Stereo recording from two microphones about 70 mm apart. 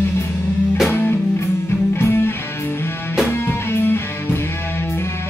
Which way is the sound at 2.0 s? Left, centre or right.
Left.